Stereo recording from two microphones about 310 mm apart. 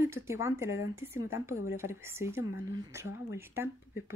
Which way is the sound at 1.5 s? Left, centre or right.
Left.